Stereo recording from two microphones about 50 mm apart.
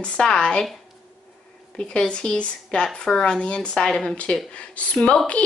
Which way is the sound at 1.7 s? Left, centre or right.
Left.